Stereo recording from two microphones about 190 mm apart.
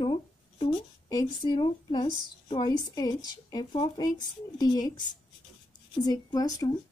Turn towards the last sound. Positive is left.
turn(degrees=20)  # may be behind; listen again after turning